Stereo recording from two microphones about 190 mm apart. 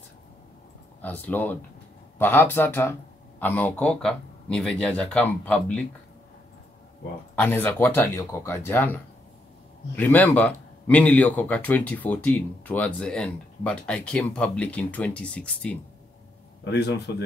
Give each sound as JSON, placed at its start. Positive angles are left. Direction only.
{"t": 1.0, "sound": "speech", "side_deg": 10}
{"t": 7.3, "sound": "speech", "side_deg": 10}
{"t": 17.1, "sound": "speech", "side_deg": 60}